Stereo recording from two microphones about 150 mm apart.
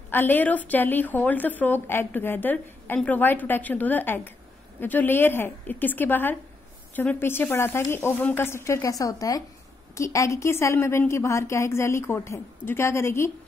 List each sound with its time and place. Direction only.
0.1 s speech: 10° left (ahead or behind)